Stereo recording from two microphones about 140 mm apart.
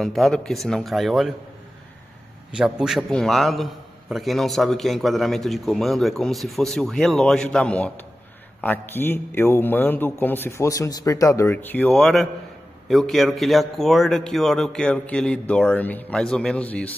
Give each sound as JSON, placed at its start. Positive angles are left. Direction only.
{"t": 0.0, "sound": "a man's voice", "side_deg": 0}
{"t": 2.5, "sound": "a man's voice", "side_deg": -5}